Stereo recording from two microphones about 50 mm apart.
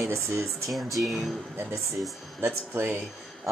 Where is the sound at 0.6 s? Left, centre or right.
Centre.